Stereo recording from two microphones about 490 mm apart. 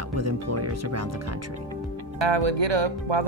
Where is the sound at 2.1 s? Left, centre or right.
Right.